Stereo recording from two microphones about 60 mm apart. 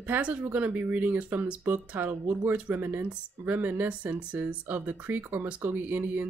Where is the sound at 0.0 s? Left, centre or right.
Right.